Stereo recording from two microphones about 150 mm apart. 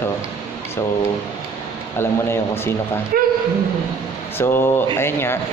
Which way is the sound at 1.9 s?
15° left (ahead or behind).